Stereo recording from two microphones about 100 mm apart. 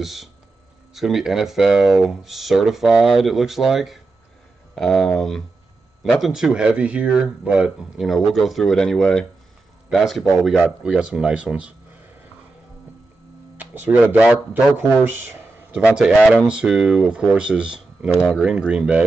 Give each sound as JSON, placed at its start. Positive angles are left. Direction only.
{"t": 0.0, "sound": "speech", "side_deg": 0}
{"t": 10.6, "sound": "speech", "side_deg": -10}
{"t": 13.8, "sound": "speech", "side_deg": -10}
{"t": 15.0, "sound": "speech", "side_deg": -20}